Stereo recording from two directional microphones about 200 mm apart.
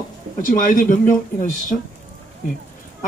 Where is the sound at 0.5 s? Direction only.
45° left (ahead or behind).